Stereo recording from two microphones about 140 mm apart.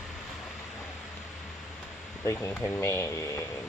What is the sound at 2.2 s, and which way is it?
Speech, 15° left (ahead or behind).